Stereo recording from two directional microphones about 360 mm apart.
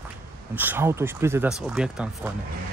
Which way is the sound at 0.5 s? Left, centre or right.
Centre.